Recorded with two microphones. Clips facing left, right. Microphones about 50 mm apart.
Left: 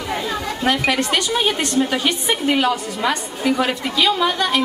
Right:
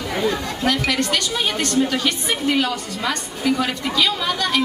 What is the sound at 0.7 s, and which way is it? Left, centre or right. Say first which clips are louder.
A woman's voice: left 2 dB; left.